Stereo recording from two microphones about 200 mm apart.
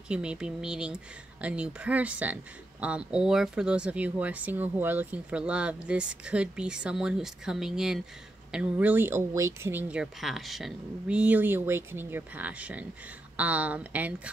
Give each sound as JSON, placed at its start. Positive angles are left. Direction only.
{"t": 0.1, "sound": "speech", "side_deg": -5}